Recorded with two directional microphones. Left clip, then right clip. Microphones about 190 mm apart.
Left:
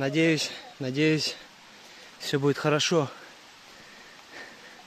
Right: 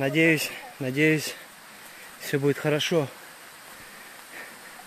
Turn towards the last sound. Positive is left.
turn(degrees=30)  # may be behind; listen again after turning